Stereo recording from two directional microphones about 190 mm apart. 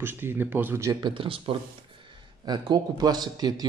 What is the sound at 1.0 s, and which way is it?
A man's voice, 25° right (ahead or behind).